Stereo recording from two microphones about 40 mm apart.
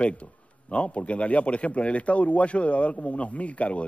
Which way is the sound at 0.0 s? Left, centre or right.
Left.